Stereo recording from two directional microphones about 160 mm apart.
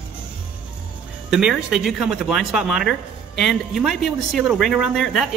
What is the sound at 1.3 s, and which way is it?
Speech, 5° right (ahead or behind).